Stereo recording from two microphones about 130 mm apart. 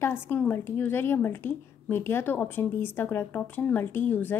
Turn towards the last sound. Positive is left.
turn(degrees=15)  # may be behind; listen again after turning